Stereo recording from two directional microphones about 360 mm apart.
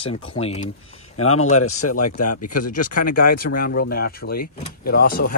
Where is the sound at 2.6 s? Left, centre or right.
Left.